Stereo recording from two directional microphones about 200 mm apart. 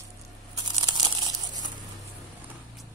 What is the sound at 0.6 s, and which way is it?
Crumpling, 20° right (ahead or behind).